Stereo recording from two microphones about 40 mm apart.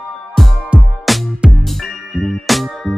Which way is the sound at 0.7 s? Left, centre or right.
Right.